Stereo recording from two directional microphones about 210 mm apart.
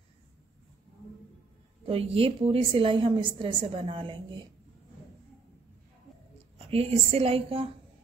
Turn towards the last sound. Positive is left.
turn(degrees=-25)  # may be behind; listen again after turning